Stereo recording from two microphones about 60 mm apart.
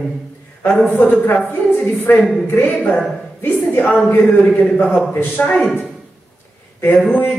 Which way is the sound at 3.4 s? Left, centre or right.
Left.